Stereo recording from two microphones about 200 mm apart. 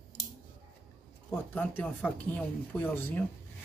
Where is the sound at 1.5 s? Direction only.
5° left (ahead or behind).